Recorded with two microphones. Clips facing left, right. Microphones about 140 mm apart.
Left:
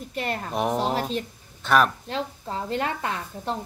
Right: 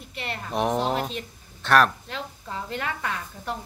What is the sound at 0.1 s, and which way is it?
Speech, 40° left (ahead or behind).